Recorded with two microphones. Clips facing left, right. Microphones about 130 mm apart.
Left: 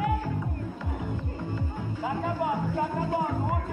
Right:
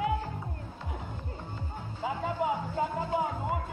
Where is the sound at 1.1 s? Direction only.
90° left.